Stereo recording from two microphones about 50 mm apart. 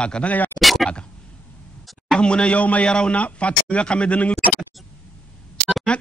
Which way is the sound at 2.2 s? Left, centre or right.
Left.